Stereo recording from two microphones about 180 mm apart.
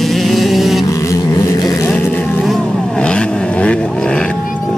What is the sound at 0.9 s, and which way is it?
Vehicle, 15° left (ahead or behind).